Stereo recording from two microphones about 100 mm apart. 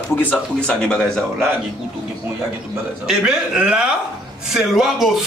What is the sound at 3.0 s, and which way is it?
A man's voice, 10° right (ahead or behind).